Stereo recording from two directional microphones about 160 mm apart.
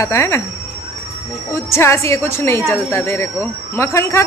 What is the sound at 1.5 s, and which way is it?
Speech, 15° left (ahead or behind).